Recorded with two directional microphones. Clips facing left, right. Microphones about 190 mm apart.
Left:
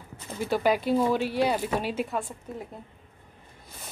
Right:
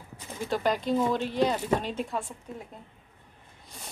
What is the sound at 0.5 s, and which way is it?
Speech, 5° left (ahead or behind).